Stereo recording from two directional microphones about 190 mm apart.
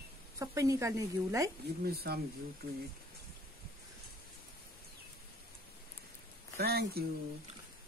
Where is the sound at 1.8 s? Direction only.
55° right (ahead or behind).